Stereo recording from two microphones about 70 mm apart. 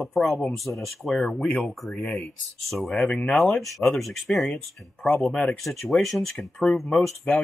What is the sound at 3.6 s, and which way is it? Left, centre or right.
Speech, centre.